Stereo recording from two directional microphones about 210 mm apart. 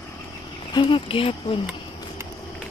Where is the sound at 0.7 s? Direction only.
25° left (ahead or behind).